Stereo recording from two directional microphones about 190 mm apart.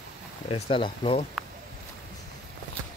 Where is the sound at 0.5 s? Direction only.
30° left (ahead or behind).